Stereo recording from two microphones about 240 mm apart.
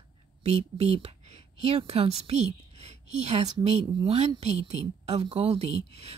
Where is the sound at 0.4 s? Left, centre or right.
Right.